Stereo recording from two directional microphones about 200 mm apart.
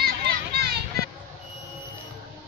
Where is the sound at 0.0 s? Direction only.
50° right (ahead or behind).